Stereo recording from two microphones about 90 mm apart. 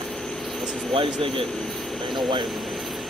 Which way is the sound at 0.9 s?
80° right.